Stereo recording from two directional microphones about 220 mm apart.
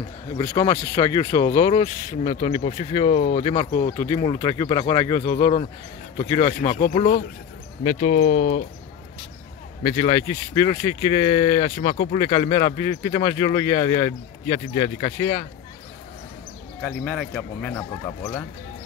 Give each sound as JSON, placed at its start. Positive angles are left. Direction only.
{"t": 0.4, "sound": "speech", "side_deg": 15}
{"t": 1.5, "sound": "speech", "side_deg": 30}
{"t": 4.0, "sound": "speech", "side_deg": 20}
{"t": 9.8, "sound": "speech", "side_deg": 30}
{"t": 16.8, "sound": "speech", "side_deg": 5}